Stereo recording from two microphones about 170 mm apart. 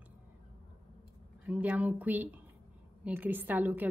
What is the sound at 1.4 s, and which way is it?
A woman's voice, 10° right (ahead or behind).